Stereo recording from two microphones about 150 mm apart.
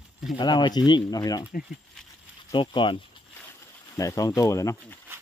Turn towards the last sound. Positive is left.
turn(degrees=20)  # may be behind; listen again after turning